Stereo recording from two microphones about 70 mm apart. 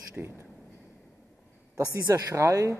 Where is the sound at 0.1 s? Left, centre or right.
Right.